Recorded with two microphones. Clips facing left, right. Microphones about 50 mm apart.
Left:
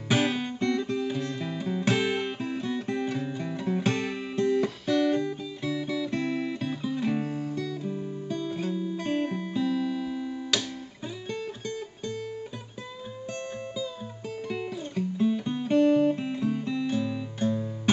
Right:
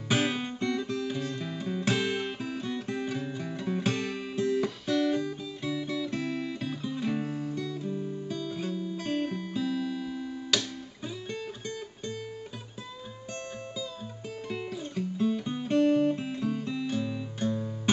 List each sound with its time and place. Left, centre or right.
0.1 s music: centre
7.8 s music: centre
14.5 s guitar: centre